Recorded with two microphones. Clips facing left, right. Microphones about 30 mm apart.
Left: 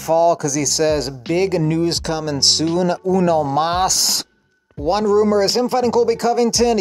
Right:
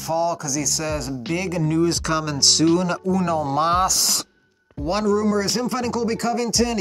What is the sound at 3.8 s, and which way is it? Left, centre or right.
Speech, left.